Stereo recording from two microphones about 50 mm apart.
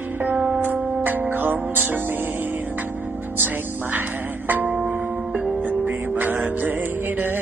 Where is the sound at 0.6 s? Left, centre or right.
Right.